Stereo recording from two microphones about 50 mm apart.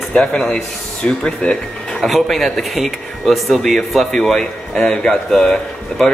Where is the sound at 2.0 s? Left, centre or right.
Centre.